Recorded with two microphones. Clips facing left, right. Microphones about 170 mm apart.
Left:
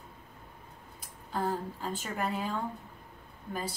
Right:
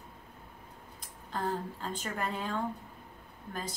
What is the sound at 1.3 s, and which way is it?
A woman's voice, 10° left (ahead or behind).